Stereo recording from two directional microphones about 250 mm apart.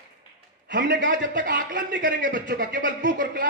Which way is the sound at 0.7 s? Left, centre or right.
Right.